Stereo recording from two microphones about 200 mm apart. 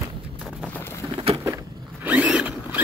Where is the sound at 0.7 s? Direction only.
10° left (ahead or behind).